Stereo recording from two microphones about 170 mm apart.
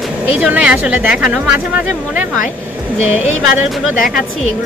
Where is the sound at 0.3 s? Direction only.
5° right (ahead or behind).